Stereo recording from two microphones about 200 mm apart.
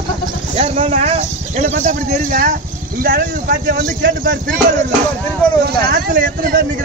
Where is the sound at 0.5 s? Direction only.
30° right (ahead or behind); by 4.3 s 60° right (ahead or behind).